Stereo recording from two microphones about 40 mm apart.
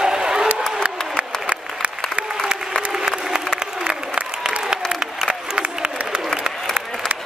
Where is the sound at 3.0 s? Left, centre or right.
Right.